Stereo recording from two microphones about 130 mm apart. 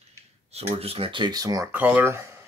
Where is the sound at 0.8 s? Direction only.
50° right (ahead or behind); by 1.7 s 30° right (ahead or behind).